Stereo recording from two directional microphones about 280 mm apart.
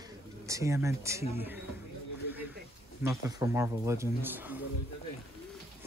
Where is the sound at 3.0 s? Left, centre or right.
Centre.